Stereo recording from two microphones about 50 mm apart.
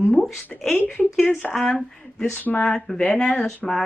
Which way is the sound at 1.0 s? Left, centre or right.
Centre.